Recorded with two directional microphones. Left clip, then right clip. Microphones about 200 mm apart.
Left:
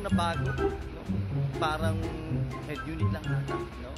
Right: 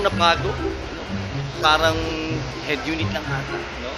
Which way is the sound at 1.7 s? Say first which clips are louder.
Right 17 dB; 20° left (ahead or behind).